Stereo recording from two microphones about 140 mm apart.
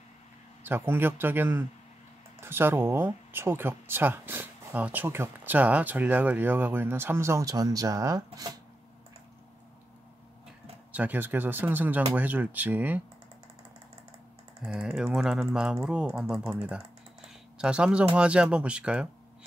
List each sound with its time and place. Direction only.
0.7 s speech: 15° right (ahead or behind)
10.9 s speech: 10° right (ahead or behind)
14.7 s speech: centre (ahead or behind)